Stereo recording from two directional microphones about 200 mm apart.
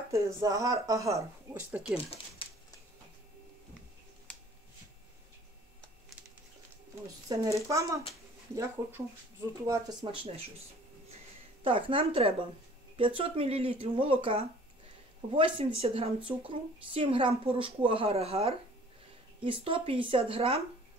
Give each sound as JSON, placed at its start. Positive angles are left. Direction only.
{"t": 0.1, "sound": "speech", "side_deg": -15}
{"t": 1.7, "sound": "speech", "side_deg": -5}
{"t": 7.2, "sound": "speech", "side_deg": -15}
{"t": 9.7, "sound": "a woman's voice", "side_deg": -20}
{"t": 11.6, "sound": "a woman's voice", "side_deg": -25}